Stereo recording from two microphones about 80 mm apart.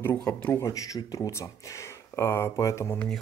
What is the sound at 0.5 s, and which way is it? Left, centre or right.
Speech, left.